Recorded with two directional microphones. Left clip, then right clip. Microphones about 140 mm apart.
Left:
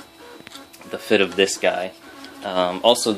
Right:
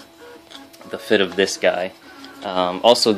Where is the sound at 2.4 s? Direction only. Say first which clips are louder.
Right 1 dB; 10° right (ahead or behind).